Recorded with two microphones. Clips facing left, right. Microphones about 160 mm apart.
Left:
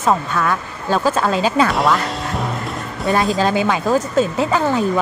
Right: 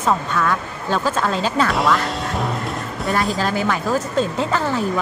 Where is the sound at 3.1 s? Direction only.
20° left (ahead or behind).